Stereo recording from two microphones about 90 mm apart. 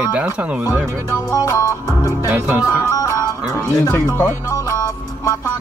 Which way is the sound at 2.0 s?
25° right (ahead or behind).